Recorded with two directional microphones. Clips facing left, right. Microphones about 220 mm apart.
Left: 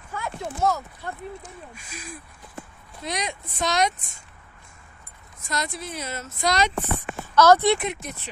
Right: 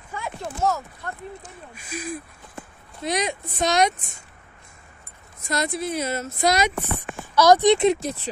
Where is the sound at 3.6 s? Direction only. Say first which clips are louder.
Right 3 dB; 50° right (ahead or behind).